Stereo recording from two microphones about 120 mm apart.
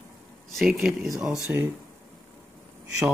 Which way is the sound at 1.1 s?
25° right (ahead or behind).